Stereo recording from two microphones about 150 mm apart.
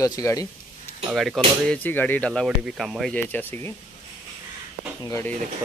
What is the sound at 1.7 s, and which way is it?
Speech, 10° left (ahead or behind).